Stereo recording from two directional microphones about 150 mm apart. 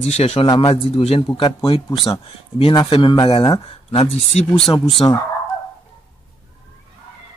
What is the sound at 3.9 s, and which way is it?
Speech, 40° left (ahead or behind).